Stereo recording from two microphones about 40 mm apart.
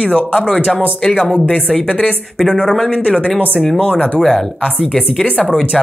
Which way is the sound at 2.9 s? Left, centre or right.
Left.